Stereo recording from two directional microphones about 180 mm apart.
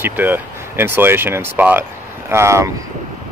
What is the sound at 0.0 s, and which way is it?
Speech, 10° right (ahead or behind).